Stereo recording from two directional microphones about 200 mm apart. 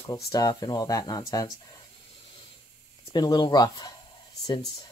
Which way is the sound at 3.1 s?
20° left (ahead or behind).